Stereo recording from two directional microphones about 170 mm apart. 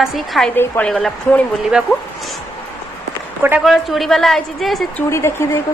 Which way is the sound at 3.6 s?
Centre (ahead or behind).